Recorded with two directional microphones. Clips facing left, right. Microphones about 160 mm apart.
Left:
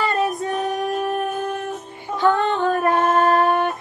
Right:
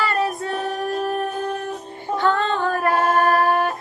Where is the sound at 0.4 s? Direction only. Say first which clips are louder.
Left 2 dB; 15° left (ahead or behind).